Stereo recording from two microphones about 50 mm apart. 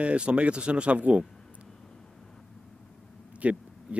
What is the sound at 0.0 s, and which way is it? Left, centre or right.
Speech, right.